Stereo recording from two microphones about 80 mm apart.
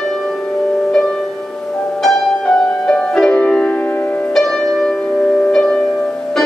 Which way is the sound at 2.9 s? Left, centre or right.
Centre.